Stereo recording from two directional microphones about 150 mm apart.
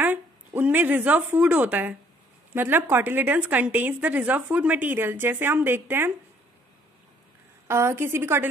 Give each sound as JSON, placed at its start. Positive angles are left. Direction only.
{"t": 0.0, "sound": "a woman's voice", "side_deg": -10}
{"t": 7.6, "sound": "a woman's voice", "side_deg": -15}